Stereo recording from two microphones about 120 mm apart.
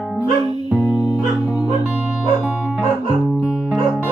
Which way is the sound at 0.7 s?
5° right (ahead or behind).